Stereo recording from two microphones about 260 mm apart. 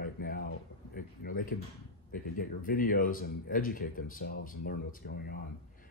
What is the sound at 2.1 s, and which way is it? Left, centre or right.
Speech, left.